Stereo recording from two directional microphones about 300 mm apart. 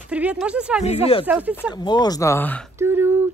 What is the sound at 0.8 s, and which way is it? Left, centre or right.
Speech, centre.